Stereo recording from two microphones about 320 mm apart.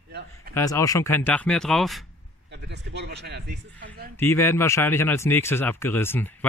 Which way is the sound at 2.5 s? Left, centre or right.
Right.